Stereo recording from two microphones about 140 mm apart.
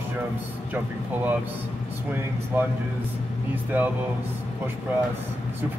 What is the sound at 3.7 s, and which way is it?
Speech, 10° right (ahead or behind).